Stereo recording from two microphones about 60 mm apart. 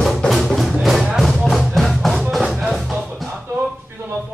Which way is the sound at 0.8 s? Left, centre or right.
Centre.